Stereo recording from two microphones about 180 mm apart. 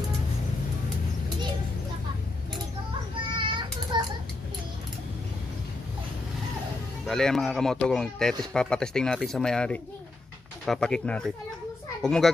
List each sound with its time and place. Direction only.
3.3 s child singing: 25° right (ahead or behind)
7.1 s a man's voice: centre (ahead or behind)